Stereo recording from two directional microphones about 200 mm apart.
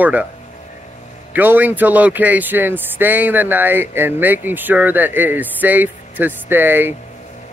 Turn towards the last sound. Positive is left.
turn(degrees=-10)  # may be behind; listen again after turning